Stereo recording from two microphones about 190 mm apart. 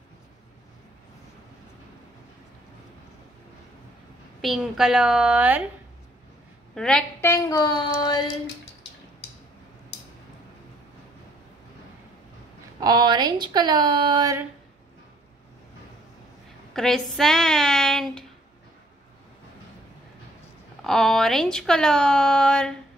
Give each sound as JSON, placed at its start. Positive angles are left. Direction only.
{"t": 4.4, "sound": "speech", "side_deg": 0}
{"t": 6.7, "sound": "a woman's voice", "side_deg": 5}
{"t": 12.8, "sound": "a woman's voice", "side_deg": -20}
{"t": 16.7, "sound": "speech", "side_deg": 0}
{"t": 20.8, "sound": "speech", "side_deg": 0}